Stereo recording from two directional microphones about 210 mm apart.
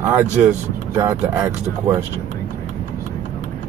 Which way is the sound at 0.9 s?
10° right (ahead or behind).